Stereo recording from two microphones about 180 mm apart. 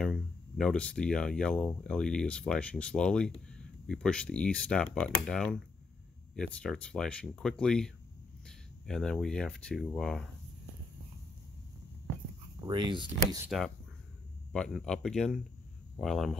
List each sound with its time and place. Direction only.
0.0 s speech: 5° left (ahead or behind)
6.6 s speech: 5° left (ahead or behind)
12.6 s speech: 25° right (ahead or behind)
14.5 s speech: 5° left (ahead or behind)